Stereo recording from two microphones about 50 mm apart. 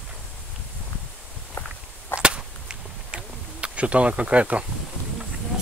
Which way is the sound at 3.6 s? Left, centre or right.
Right.